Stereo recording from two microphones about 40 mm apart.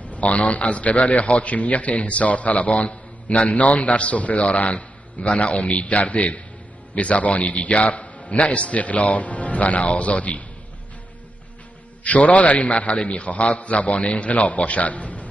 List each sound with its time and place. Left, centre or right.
0.0 s a man's voice: left
12.0 s a man's voice: left